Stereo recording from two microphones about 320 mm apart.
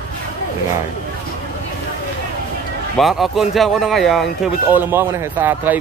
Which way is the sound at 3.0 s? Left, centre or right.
Centre.